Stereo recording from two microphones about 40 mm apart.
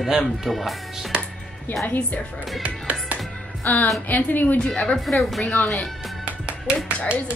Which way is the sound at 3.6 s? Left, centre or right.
Left.